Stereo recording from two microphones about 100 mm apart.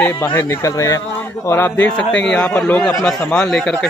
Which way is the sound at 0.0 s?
20° left (ahead or behind).